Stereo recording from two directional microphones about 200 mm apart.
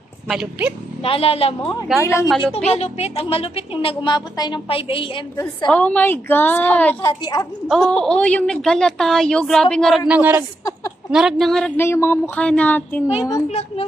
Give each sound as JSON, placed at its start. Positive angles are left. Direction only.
{"t": 0.3, "sound": "a woman's voice", "side_deg": -5}
{"t": 1.0, "sound": "a woman's voice", "side_deg": 30}
{"t": 1.6, "sound": "a woman's voice", "side_deg": 20}
{"t": 2.7, "sound": "a woman's voice", "side_deg": 30}
{"t": 5.7, "sound": "speech", "side_deg": 5}
{"t": 7.1, "sound": "a woman's voice", "side_deg": 20}
{"t": 7.6, "sound": "a woman's voice", "side_deg": 5}
{"t": 13.5, "sound": "a child's voice", "side_deg": 30}